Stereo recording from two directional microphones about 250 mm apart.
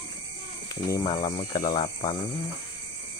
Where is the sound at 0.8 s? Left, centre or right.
Centre.